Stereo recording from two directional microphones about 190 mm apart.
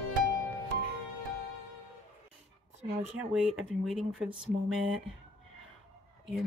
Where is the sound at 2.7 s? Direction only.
35° right (ahead or behind).